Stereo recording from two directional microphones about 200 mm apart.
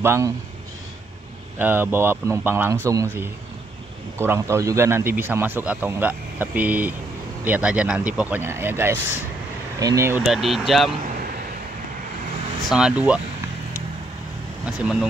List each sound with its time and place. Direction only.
0.0 s a man's voice: 10° right (ahead or behind)
1.6 s a man's voice: 10° right (ahead or behind)
10.2 s speech: centre (ahead or behind)
12.6 s speech: 5° right (ahead or behind)
14.8 s speech: 5° right (ahead or behind)